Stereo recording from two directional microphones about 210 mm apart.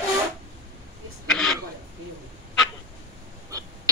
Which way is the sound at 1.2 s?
Centre (ahead or behind).